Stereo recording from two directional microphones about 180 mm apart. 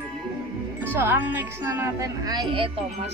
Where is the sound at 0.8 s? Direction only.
10° right (ahead or behind).